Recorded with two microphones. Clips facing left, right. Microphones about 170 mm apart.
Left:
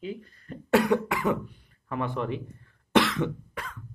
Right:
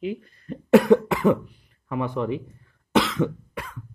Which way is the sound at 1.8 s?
15° right (ahead or behind).